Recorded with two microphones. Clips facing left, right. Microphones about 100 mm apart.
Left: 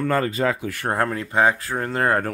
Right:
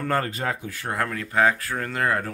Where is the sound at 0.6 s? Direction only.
75° left (ahead or behind).